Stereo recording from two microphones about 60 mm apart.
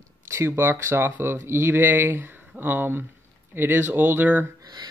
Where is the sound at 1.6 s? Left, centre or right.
Right.